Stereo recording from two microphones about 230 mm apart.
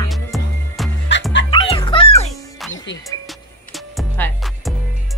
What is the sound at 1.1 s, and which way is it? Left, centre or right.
Music, left.